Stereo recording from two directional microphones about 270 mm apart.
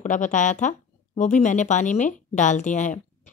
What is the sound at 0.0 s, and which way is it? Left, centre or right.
Speech, left.